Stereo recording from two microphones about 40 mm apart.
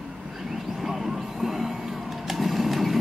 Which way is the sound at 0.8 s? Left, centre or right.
Centre.